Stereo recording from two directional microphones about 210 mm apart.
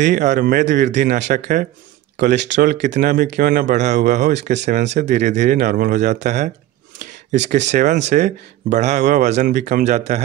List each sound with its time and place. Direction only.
0.0 s speech: 35° right (ahead or behind)
2.6 s speech: 35° right (ahead or behind)